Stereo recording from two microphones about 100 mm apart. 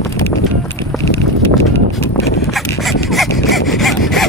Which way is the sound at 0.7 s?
25° left (ahead or behind).